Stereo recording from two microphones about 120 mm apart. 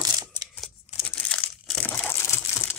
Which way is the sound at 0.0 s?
35° right (ahead or behind).